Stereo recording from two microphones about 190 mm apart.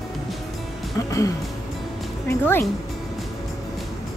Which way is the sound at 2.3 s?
10° left (ahead or behind).